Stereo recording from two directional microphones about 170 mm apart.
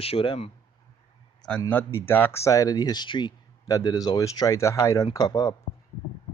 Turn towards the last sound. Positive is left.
turn(degrees=25)  # may be behind; listen again after turning